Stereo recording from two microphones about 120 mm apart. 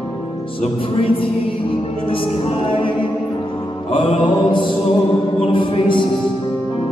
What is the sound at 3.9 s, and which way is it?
Mantra, 50° left (ahead or behind).